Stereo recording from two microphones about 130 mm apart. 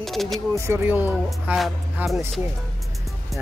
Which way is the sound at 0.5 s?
20° right (ahead or behind).